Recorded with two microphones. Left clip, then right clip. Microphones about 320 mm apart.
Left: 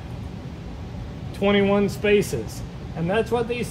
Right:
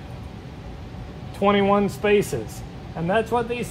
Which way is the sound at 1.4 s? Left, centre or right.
Centre.